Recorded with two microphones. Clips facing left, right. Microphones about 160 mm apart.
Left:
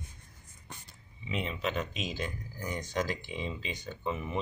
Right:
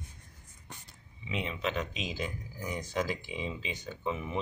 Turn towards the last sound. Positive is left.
turn(degrees=0)  # may be behind; listen again after turning